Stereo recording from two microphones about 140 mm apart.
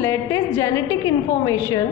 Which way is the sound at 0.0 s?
25° left (ahead or behind).